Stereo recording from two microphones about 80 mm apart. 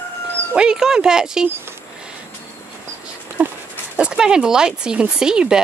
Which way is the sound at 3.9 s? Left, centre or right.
Centre.